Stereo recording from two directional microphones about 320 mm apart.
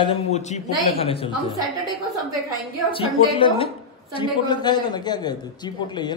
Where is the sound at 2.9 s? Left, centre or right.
Centre.